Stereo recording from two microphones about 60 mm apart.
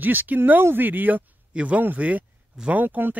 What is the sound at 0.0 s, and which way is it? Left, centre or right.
Speech, right.